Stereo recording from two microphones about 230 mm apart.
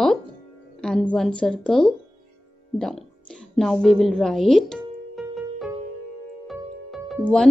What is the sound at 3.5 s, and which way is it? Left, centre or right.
Music, centre.